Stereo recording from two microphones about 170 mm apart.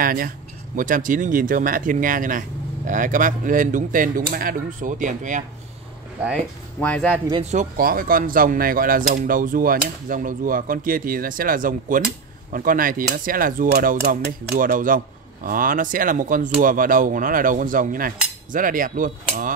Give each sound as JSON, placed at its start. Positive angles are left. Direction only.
{"t": 0.0, "sound": "speech", "side_deg": -55}
{"t": 6.8, "sound": "speech", "side_deg": 10}
{"t": 7.5, "sound": "speech", "side_deg": -55}